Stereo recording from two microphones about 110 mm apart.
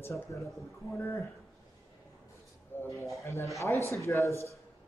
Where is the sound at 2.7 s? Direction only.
25° left (ahead or behind).